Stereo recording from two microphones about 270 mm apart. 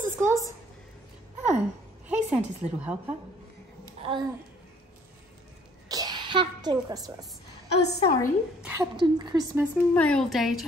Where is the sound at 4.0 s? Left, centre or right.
Centre.